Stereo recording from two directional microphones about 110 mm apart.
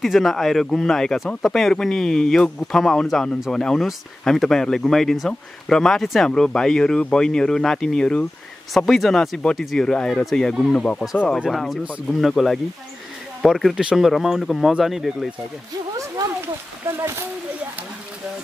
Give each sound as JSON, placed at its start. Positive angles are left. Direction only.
{"t": 0.0, "sound": "speech", "side_deg": 0}
{"t": 11.8, "sound": "speech", "side_deg": -10}
{"t": 12.2, "sound": "speech", "side_deg": 0}
{"t": 17.0, "sound": "speech", "side_deg": -20}